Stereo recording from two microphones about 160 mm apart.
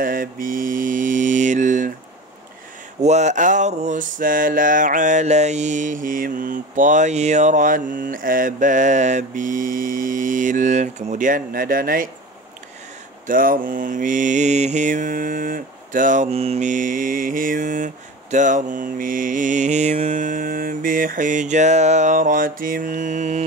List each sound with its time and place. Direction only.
0.0 s mantra: 60° right (ahead or behind)
3.0 s a sound: 45° right (ahead or behind); by 12.1 s 60° right (ahead or behind)
13.3 s mantra: 60° right (ahead or behind)